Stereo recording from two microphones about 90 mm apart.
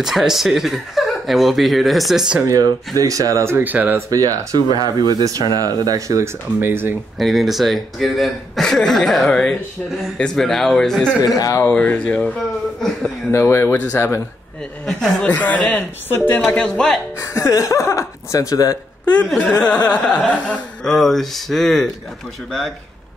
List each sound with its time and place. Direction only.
0.0 s speech: 5° right (ahead or behind)
2.4 s speech: 40° right (ahead or behind)
3.5 s speech: 20° right (ahead or behind)
4.1 s speech: 40° right (ahead or behind)
5.9 s speech: 35° right (ahead or behind)
6.6 s speech: 25° right (ahead or behind)
7.2 s speech: centre (ahead or behind)
11.2 s speech: 40° left (ahead or behind)
11.6 s speech: 15° left (ahead or behind)
13.3 s speech: 30° left (ahead or behind)
14.9 s speech: 5° left (ahead or behind)
15.3 s speech: 15° left (ahead or behind)
17.2 s speech: 35° left (ahead or behind)
19.2 s speech: 10° left (ahead or behind)